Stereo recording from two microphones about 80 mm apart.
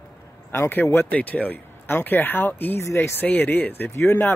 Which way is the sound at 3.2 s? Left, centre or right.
Left.